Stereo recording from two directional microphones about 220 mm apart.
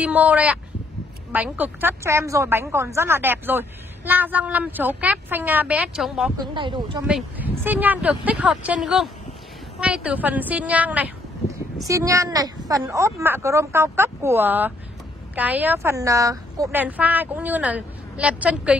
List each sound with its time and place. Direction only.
0.0 s a woman's voice: 5° right (ahead or behind)
6.3 s speech: 20° right (ahead or behind)
7.1 s a woman's voice: 5° right (ahead or behind)